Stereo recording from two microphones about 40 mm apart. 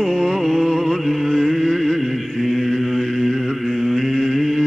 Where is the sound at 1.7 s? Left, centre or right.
Centre.